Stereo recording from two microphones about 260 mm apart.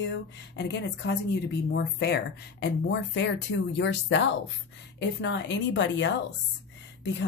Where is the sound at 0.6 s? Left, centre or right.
Left.